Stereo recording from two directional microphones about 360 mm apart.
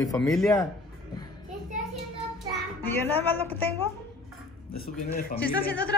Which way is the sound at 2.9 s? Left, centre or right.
Centre.